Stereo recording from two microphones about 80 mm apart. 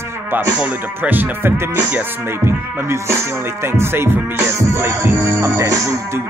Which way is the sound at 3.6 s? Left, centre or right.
Right.